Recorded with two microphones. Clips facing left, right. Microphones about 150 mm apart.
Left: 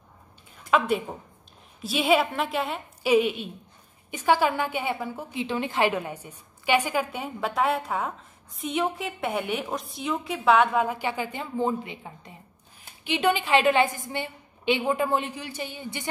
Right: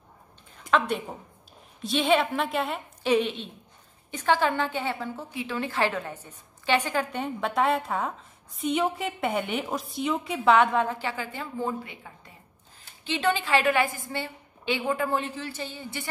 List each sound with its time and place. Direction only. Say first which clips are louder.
0.7 s a woman's voice: left 2 dB; 5° left (ahead or behind)